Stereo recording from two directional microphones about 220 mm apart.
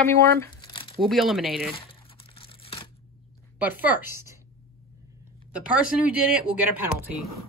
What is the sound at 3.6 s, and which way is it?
Speech, 5° right (ahead or behind).